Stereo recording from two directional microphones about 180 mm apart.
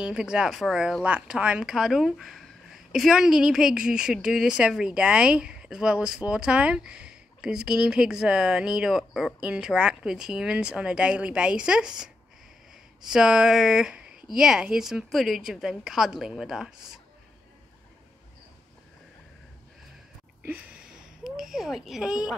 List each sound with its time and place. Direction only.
0.0 s speech: 5° right (ahead or behind)
21.2 s speech: centre (ahead or behind)